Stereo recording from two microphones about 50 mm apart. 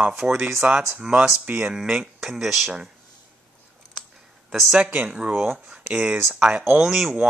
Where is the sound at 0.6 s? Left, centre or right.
Right.